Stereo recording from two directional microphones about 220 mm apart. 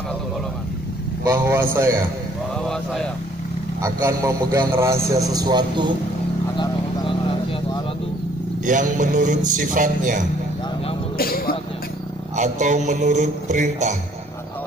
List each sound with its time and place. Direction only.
1.2 s a man's voice: 15° right (ahead or behind)
2.7 s speech: centre (ahead or behind)
3.8 s a man's voice: 15° right (ahead or behind)
6.6 s vehicle: 20° left (ahead or behind)
8.6 s a man's voice: 35° right (ahead or behind)
11.1 s a sound: 45° left (ahead or behind)
12.4 s a man's voice: 35° right (ahead or behind)